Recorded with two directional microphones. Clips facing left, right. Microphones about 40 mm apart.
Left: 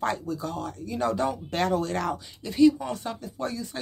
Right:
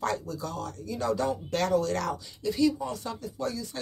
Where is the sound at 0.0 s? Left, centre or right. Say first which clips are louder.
Left 2 dB; left.